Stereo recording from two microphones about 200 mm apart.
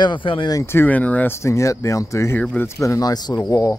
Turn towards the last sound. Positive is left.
turn(degrees=20)  # may be behind; listen again after turning